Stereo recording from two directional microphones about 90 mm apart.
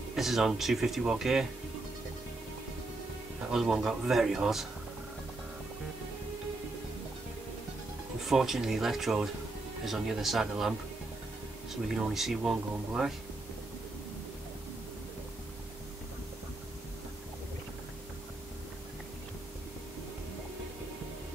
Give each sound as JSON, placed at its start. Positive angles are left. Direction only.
{"t": 0.1, "sound": "speech", "side_deg": -5}
{"t": 3.5, "sound": "speech", "side_deg": -5}
{"t": 8.3, "sound": "speech", "side_deg": -5}
{"t": 11.7, "sound": "speech", "side_deg": -5}